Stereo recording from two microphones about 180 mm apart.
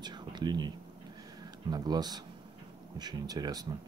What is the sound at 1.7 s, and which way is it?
Speech, 25° right (ahead or behind).